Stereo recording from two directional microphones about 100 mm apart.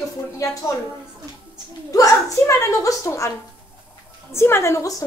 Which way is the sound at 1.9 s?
30° left (ahead or behind).